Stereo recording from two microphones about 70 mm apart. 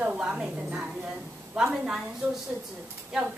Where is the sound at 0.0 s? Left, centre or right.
Centre.